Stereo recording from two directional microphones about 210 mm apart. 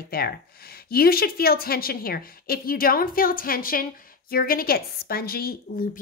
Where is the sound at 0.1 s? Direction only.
45° left (ahead or behind).